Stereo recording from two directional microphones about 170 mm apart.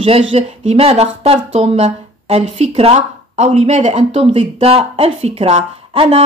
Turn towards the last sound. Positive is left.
turn(degrees=-35)  # may be behind; listen again after turning